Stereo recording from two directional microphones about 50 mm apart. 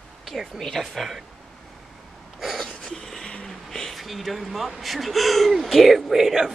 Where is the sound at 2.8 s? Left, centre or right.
Centre.